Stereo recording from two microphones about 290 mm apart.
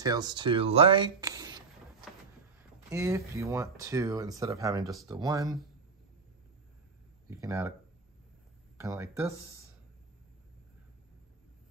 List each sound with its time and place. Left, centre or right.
0.0 s speech: centre
2.9 s speech: centre
7.2 s speech: centre
8.7 s speech: centre